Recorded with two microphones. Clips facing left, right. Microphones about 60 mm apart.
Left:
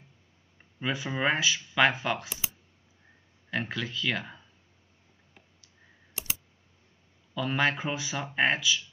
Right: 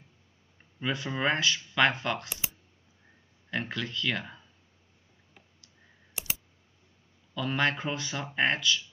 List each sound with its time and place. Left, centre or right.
0.7 s speech: centre
3.4 s speech: centre
7.3 s speech: centre